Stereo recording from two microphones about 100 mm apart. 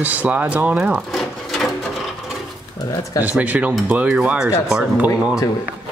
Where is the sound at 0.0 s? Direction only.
15° right (ahead or behind).